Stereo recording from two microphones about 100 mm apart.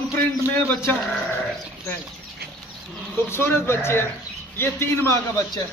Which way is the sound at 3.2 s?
25° left (ahead or behind).